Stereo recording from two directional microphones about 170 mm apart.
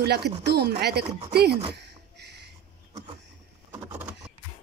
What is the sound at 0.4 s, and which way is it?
Speech, 70° right (ahead or behind).